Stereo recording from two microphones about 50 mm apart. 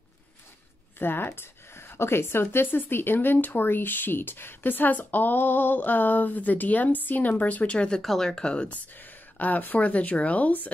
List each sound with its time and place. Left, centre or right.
0.9 s speech: left
2.5 s speech: left
8.0 s speech: centre
8.3 s speech: centre
8.6 s speech: left